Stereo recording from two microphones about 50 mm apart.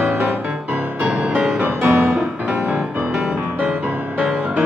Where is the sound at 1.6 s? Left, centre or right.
Right.